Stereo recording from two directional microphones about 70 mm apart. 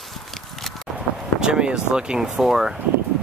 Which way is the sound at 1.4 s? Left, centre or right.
Centre.